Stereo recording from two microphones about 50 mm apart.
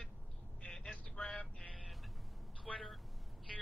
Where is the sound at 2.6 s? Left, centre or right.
Centre.